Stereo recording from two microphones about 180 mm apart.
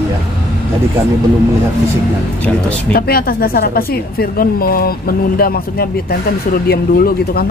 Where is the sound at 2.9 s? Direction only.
60° left (ahead or behind).